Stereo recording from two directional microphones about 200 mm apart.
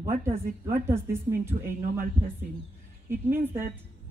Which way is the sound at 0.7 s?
15° right (ahead or behind).